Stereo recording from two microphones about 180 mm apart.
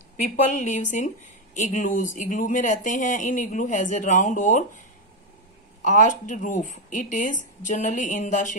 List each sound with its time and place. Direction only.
0.5 s speech: 45° left (ahead or behind)
5.9 s speech: 45° left (ahead or behind)